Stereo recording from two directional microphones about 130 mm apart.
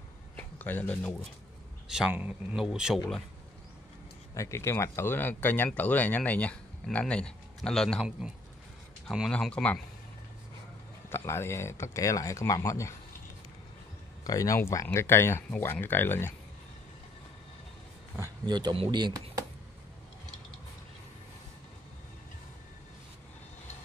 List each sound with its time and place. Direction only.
0.4 s speech: 15° left (ahead or behind)
2.0 s speech: 10° right (ahead or behind)
4.4 s speech: 20° left (ahead or behind); by 9.3 s 5° right (ahead or behind)
9.3 s speech: 10° left (ahead or behind)
11.1 s speech: 20° left (ahead or behind)
14.2 s speech: 25° left (ahead or behind)
18.4 s speech: 35° right (ahead or behind)